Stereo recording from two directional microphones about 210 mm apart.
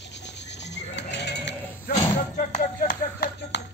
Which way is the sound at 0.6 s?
55° left (ahead or behind).